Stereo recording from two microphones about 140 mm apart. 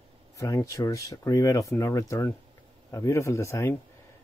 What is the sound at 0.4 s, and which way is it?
Speech, 25° left (ahead or behind).